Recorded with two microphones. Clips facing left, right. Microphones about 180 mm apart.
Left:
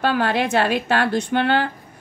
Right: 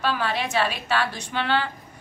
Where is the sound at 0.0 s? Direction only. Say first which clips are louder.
Left 6 dB; 55° left (ahead or behind).